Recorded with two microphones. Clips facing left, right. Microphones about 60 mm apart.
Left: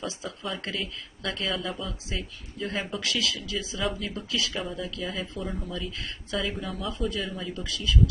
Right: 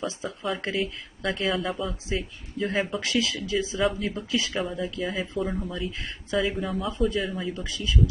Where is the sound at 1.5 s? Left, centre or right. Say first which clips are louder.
Right 4 dB; centre.